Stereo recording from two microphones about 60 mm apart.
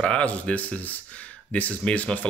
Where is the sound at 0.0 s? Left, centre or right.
Centre.